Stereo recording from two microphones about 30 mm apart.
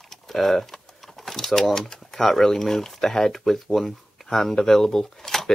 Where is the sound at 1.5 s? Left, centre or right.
Centre.